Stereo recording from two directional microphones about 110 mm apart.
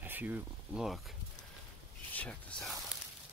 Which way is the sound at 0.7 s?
Centre (ahead or behind).